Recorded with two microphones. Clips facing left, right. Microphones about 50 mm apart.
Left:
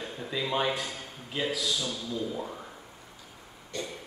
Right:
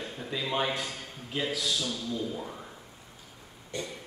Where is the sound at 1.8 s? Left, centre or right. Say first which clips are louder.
Even; left.